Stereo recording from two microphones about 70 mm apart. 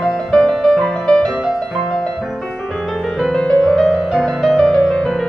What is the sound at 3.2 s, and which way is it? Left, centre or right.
Music, centre.